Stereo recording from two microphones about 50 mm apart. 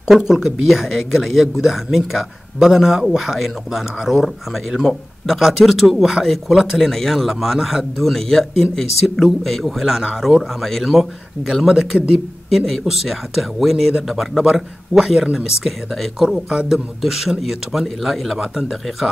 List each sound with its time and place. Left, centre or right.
0.1 s a man's voice: centre
16.4 s a man's voice: centre
16.7 s speech: centre